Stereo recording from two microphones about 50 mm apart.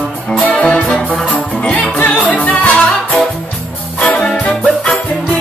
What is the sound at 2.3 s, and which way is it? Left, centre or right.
Music, left.